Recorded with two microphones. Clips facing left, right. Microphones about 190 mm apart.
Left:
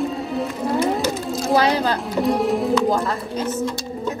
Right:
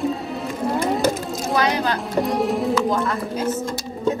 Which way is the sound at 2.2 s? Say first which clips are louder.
Left 3 dB; centre (ahead or behind).